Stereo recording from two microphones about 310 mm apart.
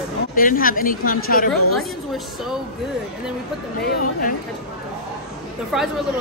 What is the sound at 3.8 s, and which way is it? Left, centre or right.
Speech, left.